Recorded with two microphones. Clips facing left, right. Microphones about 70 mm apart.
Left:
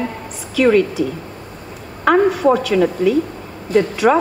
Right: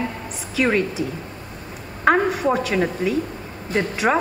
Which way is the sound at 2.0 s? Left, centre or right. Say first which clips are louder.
Left 5 dB; right.